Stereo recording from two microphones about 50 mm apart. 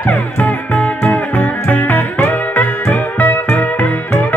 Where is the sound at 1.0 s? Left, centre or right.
Left.